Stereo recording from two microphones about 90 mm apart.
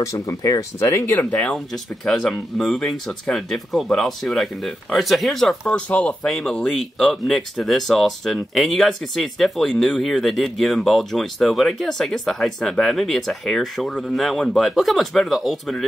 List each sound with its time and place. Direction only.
0.0 s speech: 40° left (ahead or behind)
1.3 s speech: 10° left (ahead or behind)
5.7 s speech: 15° left (ahead or behind)
6.2 s speech: 5° left (ahead or behind)